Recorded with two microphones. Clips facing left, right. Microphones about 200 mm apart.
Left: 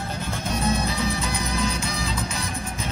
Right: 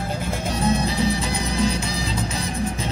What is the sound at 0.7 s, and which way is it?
Music, 30° right (ahead or behind).